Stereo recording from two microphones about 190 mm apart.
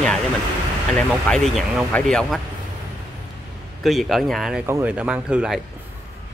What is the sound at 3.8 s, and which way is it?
Speech, centre (ahead or behind).